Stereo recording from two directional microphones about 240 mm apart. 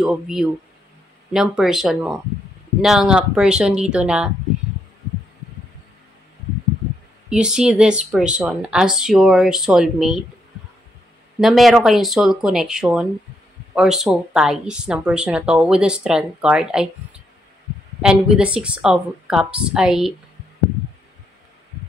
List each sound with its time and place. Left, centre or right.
0.0 s speech: centre
7.2 s speech: centre
11.4 s speech: centre
18.0 s speech: centre